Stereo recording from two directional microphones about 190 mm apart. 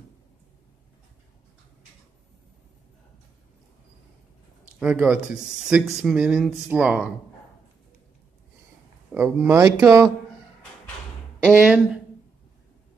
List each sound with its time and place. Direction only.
4.7 s speech: 5° right (ahead or behind)
9.1 s speech: 10° right (ahead or behind)
11.5 s speech: 5° right (ahead or behind)